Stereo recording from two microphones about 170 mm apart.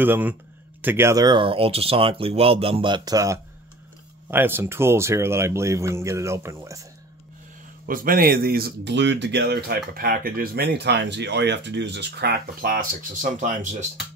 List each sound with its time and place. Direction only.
0.0 s speech: 10° right (ahead or behind)
7.9 s speech: 55° right (ahead or behind)